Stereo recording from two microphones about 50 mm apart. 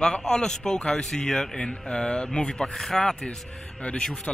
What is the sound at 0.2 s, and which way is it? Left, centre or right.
A man's voice, centre.